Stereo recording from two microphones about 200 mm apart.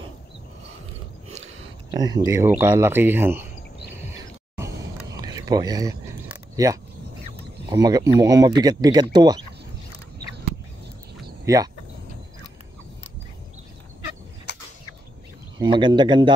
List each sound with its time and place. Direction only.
1.9 s speech: 20° right (ahead or behind)
4.6 s a sound: 15° right (ahead or behind)
7.7 s speech: 15° right (ahead or behind)
11.4 s speech: 15° right (ahead or behind)
14.5 s a sound: 60° left (ahead or behind)
15.6 s speech: 25° right (ahead or behind)